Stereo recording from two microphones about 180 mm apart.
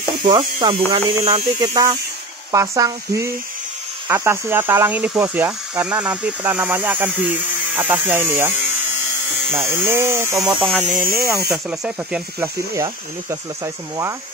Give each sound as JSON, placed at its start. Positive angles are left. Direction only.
{"t": 0.6, "sound": "speech", "side_deg": -25}
{"t": 1.6, "sound": "speech", "side_deg": -20}
{"t": 10.6, "sound": "speech", "side_deg": 5}
{"t": 11.1, "sound": "speech", "side_deg": -15}
{"t": 11.5, "sound": "speech", "side_deg": -5}
{"t": 12.4, "sound": "speech", "side_deg": -15}